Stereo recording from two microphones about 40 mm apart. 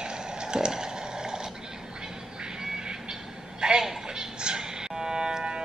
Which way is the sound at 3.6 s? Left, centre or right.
Centre.